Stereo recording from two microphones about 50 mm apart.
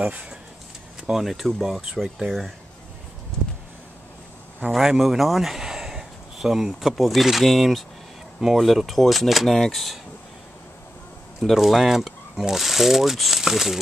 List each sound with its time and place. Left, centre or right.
0.0 s speech: right
1.1 s speech: centre
4.6 s speech: centre
11.5 s speech: centre